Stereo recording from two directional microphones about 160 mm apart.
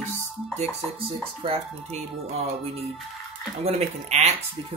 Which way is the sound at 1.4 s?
40° right (ahead or behind).